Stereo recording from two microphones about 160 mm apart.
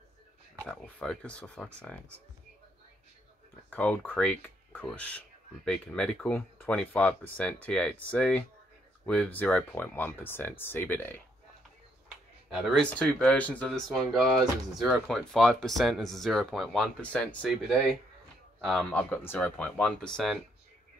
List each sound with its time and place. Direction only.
0.7 s speech: 10° left (ahead or behind)
3.7 s speech: 10° left (ahead or behind)
12.4 s speech: centre (ahead or behind)